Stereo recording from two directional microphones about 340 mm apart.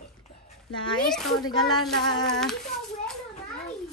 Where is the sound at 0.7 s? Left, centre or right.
Centre.